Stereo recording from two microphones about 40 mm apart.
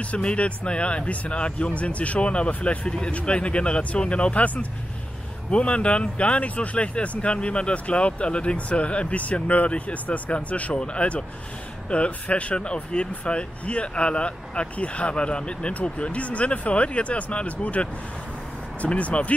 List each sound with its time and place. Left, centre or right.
0.0 s speech: left
18.9 s speech: left